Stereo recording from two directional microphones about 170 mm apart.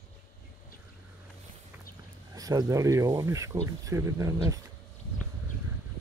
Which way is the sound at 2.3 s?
20° right (ahead or behind).